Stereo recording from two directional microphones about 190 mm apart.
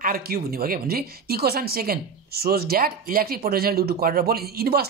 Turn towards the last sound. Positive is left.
turn(degrees=-55)  # may be behind; listen again after turning